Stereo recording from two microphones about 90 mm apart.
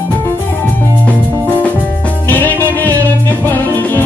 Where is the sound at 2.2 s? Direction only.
20° left (ahead or behind).